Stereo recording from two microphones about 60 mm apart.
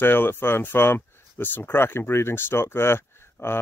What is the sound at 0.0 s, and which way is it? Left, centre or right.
Speech, left.